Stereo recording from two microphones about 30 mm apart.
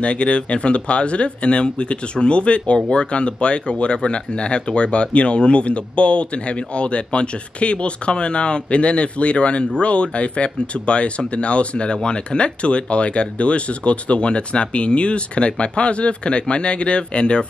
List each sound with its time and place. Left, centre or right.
0.0 s speech: left